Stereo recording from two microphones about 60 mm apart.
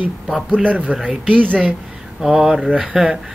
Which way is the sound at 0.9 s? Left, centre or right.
Centre.